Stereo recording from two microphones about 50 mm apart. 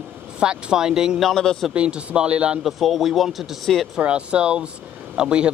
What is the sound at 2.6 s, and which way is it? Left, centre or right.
Speech, centre.